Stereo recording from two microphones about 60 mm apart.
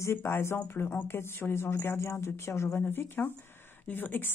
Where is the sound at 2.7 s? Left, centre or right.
Left.